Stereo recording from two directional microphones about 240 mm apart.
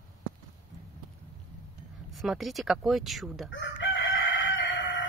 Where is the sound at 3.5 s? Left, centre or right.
Left.